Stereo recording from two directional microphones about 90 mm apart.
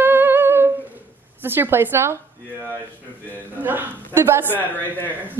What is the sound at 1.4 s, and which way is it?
Speech, 25° right (ahead or behind).